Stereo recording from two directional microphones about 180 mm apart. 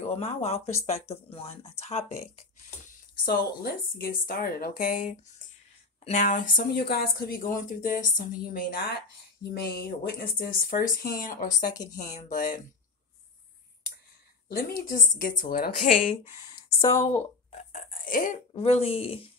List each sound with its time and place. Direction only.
0.1 s speech: 35° left (ahead or behind)
3.3 s speech: 55° left (ahead or behind)
11.7 s speech: 20° left (ahead or behind)
12.3 s speech: 50° left (ahead or behind)
14.5 s speech: 55° left (ahead or behind)
16.6 s a sound: 35° left (ahead or behind)
18.0 s speech: 50° left (ahead or behind)
18.5 s speech: 35° left (ahead or behind)